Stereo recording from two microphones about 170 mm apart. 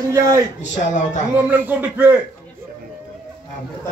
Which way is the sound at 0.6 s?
45° left (ahead or behind).